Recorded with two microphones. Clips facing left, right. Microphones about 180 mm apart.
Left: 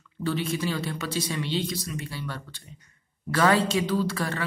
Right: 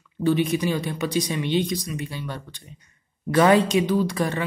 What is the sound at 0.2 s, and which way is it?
Speech, 15° right (ahead or behind).